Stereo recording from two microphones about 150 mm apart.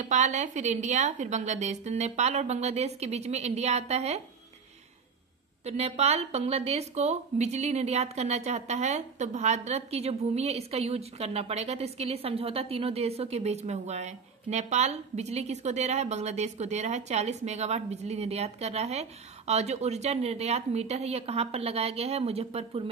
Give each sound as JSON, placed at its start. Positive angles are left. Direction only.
{"t": 0.0, "sound": "speech", "side_deg": -50}
{"t": 5.7, "sound": "speech", "side_deg": -45}